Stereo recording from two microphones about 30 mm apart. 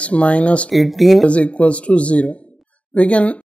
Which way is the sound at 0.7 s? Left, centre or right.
Centre.